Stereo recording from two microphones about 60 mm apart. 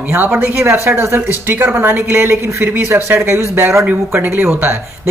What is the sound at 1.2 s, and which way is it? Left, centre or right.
Speech, right.